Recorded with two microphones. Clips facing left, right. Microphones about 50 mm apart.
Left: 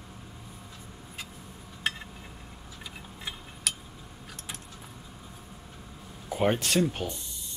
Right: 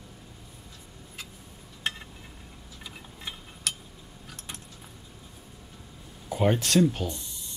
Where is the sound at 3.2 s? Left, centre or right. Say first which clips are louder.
Even; centre.